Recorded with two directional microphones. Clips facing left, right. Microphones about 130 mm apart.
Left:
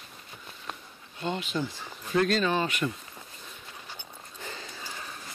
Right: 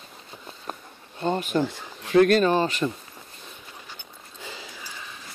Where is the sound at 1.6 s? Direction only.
75° right (ahead or behind); by 2.5 s 55° right (ahead or behind).